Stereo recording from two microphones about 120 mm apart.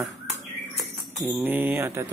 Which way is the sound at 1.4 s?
15° right (ahead or behind).